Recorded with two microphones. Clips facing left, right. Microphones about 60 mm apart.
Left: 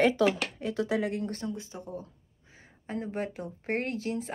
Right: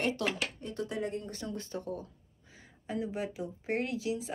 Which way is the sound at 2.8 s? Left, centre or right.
Left.